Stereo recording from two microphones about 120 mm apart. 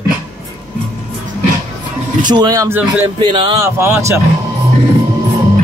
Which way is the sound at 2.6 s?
20° right (ahead or behind).